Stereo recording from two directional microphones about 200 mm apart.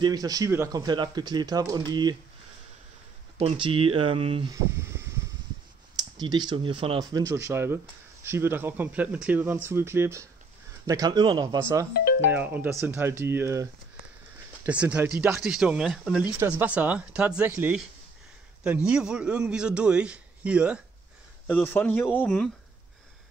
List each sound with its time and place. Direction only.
0.0 s speech: 20° right (ahead or behind)
3.3 s speech: 30° right (ahead or behind)
6.1 s speech: 20° right (ahead or behind)
11.9 s music: 50° left (ahead or behind)
12.3 s speech: 10° right (ahead or behind)
14.7 s a man's voice: 5° right (ahead or behind)
21.5 s speech: 10° left (ahead or behind)